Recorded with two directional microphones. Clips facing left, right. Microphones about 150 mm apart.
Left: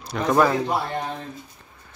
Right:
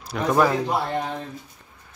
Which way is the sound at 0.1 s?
5° right (ahead or behind).